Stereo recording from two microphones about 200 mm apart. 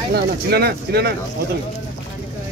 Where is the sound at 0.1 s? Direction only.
55° right (ahead or behind).